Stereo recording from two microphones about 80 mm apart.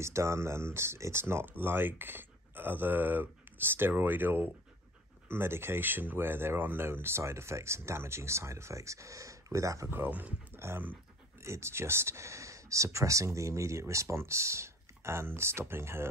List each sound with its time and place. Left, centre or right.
0.0 s speech: right
9.8 s speech: right